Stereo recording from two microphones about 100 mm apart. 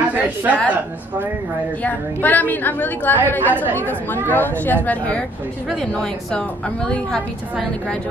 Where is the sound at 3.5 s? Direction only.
20° right (ahead or behind).